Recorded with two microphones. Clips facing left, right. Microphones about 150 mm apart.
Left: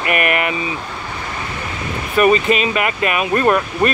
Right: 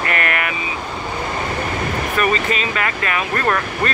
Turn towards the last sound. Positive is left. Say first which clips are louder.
# left 5 dB
turn(degrees=20)  # may be behind; listen again after turning